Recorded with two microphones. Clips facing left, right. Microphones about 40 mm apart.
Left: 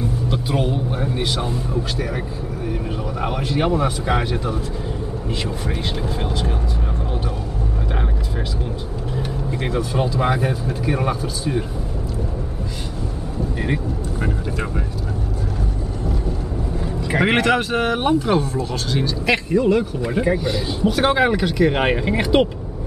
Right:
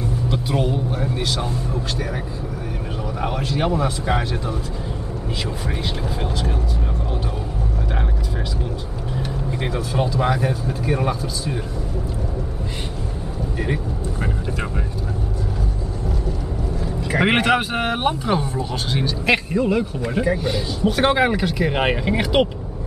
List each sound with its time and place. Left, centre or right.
0.3 s speech: centre
3.2 s a man's voice: centre
9.5 s speech: centre
10.0 s speech: centre
17.2 s speech: centre
19.8 s speech: centre